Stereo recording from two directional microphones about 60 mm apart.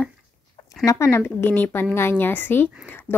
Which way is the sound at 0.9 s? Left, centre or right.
Left.